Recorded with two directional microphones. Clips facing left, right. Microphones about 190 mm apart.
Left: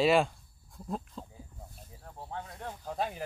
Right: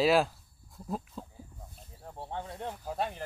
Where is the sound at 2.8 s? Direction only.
Centre (ahead or behind).